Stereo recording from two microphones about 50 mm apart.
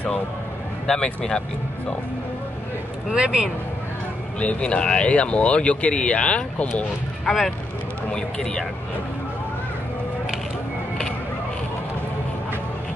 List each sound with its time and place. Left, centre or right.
0.8 s speech: centre
3.1 s speech: centre
4.4 s speech: left
7.2 s speech: centre